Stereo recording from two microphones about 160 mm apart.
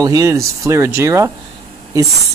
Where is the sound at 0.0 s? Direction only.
20° right (ahead or behind).